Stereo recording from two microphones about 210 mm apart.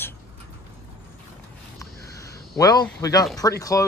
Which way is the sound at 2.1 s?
15° left (ahead or behind).